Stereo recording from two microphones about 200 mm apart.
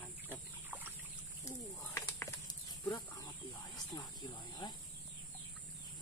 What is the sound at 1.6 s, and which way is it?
Bird, 10° left (ahead or behind).